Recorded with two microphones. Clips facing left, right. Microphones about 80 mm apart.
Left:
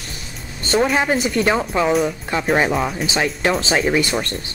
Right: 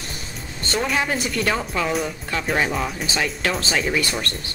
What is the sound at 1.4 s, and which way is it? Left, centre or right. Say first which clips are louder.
Speech: left 4 dB; left.